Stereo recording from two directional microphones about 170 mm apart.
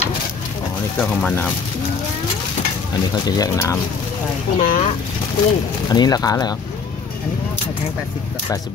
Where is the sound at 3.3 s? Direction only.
20° left (ahead or behind).